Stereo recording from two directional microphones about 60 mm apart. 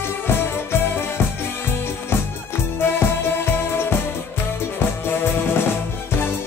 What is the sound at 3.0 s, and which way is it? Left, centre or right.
Music, left.